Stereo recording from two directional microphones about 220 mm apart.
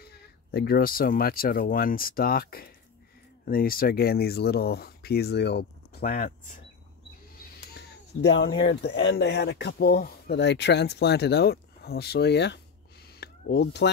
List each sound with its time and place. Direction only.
0.0 s speech: 45° left (ahead or behind)
7.5 s speech: 50° left (ahead or behind)
13.1 s a sound: 50° left (ahead or behind)